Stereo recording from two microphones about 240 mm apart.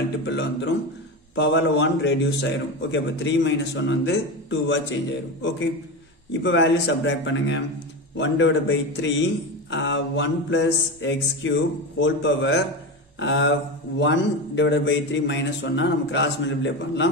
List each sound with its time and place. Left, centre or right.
0.2 s a man's voice: left
6.4 s a man's voice: left